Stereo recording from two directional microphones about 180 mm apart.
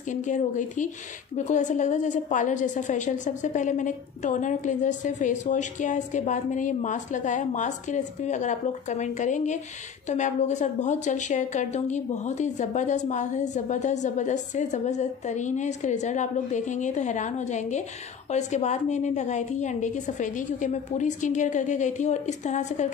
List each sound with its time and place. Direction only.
0.1 s a woman's voice: 45° left (ahead or behind)